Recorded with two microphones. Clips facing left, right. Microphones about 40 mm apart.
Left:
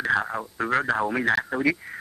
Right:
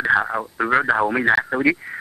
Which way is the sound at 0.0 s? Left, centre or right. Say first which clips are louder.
Right 6 dB; centre.